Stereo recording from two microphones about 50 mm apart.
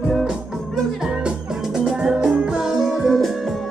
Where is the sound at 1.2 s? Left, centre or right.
Centre.